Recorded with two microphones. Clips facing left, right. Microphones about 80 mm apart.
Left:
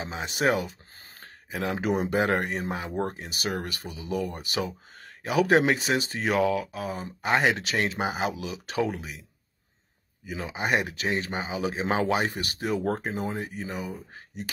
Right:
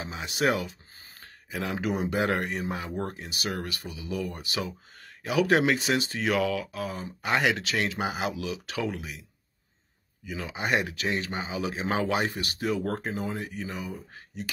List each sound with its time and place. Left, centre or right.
0.0 s speech: left
1.7 s speech: left
10.3 s speech: left
13.6 s speech: left